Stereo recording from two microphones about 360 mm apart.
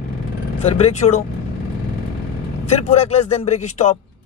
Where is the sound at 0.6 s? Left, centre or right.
Centre.